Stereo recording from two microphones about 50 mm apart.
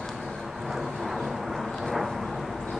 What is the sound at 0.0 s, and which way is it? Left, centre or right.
Vehicle, centre.